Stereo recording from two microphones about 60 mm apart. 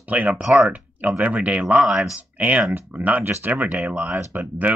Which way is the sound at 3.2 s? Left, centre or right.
Right.